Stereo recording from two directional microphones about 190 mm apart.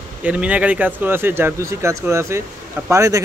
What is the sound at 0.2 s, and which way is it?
Speech, 5° right (ahead or behind).